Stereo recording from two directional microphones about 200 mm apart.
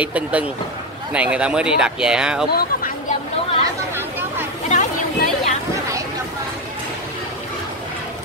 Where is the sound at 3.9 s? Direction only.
10° right (ahead or behind).